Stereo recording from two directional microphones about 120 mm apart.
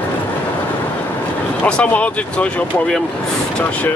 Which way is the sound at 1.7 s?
10° left (ahead or behind).